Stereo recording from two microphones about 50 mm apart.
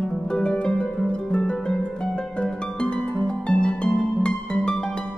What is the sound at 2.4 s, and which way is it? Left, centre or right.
Music, centre.